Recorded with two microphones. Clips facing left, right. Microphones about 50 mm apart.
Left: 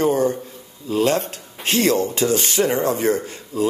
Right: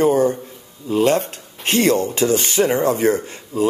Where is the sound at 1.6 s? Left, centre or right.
Right.